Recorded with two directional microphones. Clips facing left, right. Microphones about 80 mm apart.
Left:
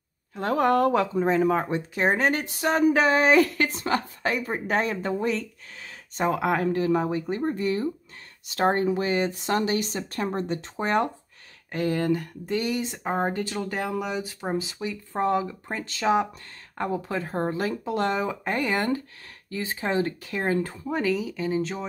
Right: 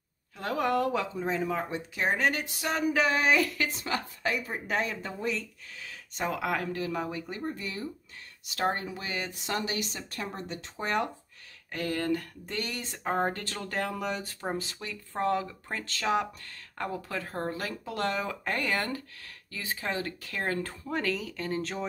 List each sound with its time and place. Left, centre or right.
0.4 s speech: left
11.7 s speech: left; by 21.8 s centre